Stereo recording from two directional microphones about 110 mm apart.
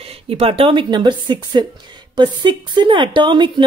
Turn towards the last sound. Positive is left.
turn(degrees=-45)  # may be behind; listen again after turning